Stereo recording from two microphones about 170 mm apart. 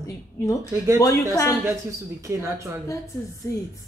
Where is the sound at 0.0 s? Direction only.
20° left (ahead or behind).